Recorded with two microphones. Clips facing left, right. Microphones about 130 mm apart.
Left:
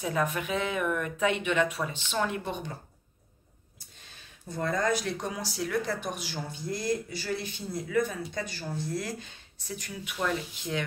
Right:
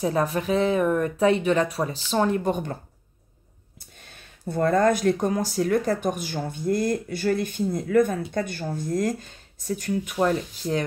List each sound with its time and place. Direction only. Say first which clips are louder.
0.0 s speech: right 6 dB; 35° right (ahead or behind)
4.5 s speech: right 8 dB; 55° right (ahead or behind); by 10.9 s 40° right (ahead or behind)